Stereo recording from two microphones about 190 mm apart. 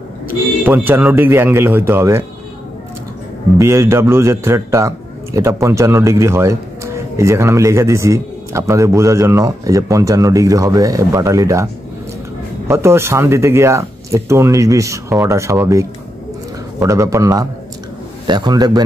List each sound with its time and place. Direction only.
0.3 s a man's voice: 10° right (ahead or behind)
3.5 s a man's voice: 15° right (ahead or behind)